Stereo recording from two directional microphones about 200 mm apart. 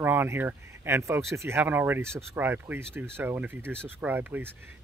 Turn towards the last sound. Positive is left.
turn(degrees=-10)  # may be behind; listen again after turning